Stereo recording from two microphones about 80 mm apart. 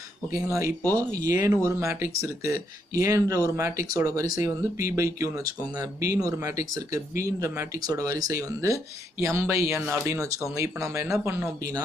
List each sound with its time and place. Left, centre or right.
0.5 s speech: right